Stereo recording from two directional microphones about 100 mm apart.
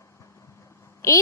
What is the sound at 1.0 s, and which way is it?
Speech, 30° left (ahead or behind).